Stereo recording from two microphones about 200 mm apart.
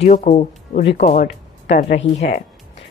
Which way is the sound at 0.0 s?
35° left (ahead or behind).